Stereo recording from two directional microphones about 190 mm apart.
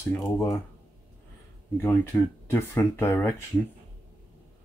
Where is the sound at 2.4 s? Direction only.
10° left (ahead or behind).